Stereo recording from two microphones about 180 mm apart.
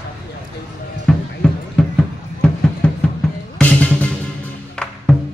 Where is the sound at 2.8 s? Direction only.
5° left (ahead or behind).